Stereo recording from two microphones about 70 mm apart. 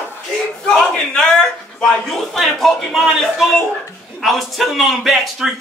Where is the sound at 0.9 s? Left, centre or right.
Centre.